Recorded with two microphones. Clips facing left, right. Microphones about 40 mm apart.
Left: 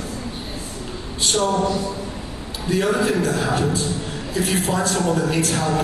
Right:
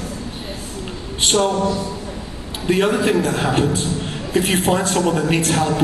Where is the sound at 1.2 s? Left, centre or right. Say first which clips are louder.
Right 3 dB; right.